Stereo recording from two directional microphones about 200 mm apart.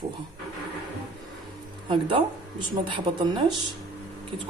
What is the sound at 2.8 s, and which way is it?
Speech, 25° right (ahead or behind).